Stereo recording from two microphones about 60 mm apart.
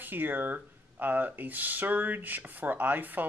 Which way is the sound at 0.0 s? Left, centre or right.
Right.